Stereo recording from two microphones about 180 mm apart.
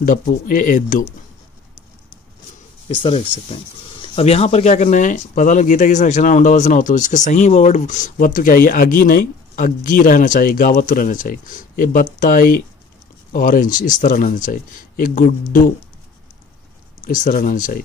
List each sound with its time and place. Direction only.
0.0 s speech: 45° left (ahead or behind)
2.9 s speech: 30° left (ahead or behind); by 15.3 s 50° left (ahead or behind)
17.0 s speech: 45° left (ahead or behind)